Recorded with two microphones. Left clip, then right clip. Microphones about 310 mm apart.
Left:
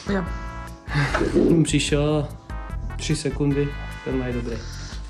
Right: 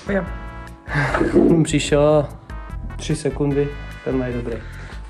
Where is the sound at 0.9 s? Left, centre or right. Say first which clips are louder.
Right 4 dB; centre.